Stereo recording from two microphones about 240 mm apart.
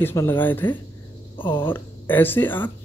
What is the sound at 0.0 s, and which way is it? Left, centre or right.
Speech, centre.